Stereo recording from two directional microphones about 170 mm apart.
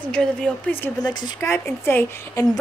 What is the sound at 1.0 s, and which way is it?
A woman's voice, 25° left (ahead or behind).